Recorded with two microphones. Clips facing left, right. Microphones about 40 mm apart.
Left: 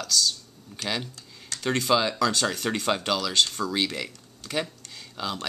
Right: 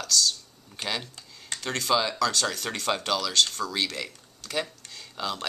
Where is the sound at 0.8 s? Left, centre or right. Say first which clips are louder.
Left 1 dB; right.